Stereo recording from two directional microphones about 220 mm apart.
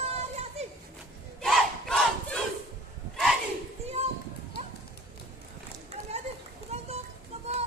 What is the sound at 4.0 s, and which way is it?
Children playing, 30° right (ahead or behind).